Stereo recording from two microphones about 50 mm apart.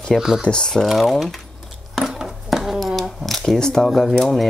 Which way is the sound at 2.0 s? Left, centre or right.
Centre.